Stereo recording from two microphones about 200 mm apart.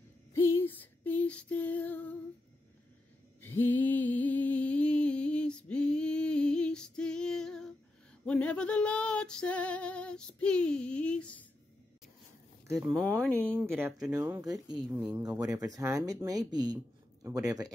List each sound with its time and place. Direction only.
0.3 s female singing: 10° left (ahead or behind)
3.3 s a sound: 10° left (ahead or behind)
8.3 s female singing: 5° left (ahead or behind)
12.7 s speech: centre (ahead or behind)
13.6 s speech: 5° right (ahead or behind)